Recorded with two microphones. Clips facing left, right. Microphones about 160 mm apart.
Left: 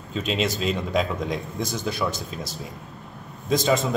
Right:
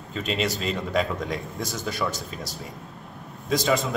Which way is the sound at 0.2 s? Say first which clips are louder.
Left 1 dB; 20° left (ahead or behind).